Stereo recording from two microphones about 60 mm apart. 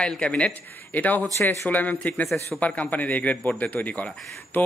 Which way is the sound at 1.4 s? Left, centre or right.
Left.